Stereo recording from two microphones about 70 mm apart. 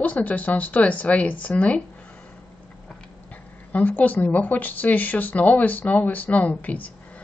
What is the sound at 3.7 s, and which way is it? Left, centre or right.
Speech, left.